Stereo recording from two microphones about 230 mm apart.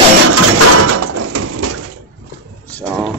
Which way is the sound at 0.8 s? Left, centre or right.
Right.